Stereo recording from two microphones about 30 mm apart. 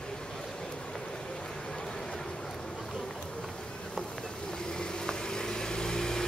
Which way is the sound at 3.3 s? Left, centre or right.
Left.